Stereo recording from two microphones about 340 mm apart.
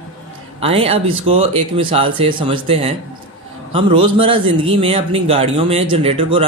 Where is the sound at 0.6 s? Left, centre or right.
Centre.